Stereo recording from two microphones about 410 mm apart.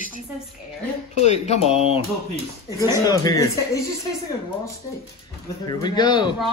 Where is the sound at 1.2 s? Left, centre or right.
Centre.